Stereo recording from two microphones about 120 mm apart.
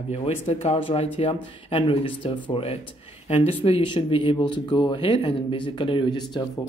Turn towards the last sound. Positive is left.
turn(degrees=40)  # may be behind; listen again after turning